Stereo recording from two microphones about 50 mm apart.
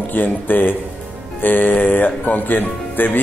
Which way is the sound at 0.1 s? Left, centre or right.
Left.